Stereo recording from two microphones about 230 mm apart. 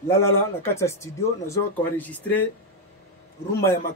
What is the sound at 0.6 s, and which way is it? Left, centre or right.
Speech, centre.